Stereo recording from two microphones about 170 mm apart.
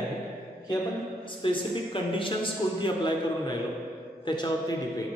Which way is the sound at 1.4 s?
30° left (ahead or behind).